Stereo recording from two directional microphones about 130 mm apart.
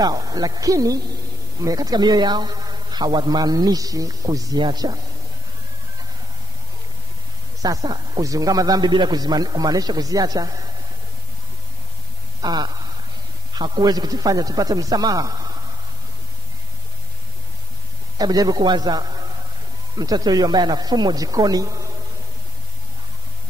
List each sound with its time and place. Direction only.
0.0 s a man's voice: 30° right (ahead or behind)
7.6 s a man's voice: 30° right (ahead or behind)
12.4 s a man's voice: 35° right (ahead or behind)
18.1 s a man's voice: 30° right (ahead or behind)